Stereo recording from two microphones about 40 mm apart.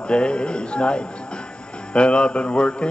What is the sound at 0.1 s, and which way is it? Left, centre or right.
Mantra, left.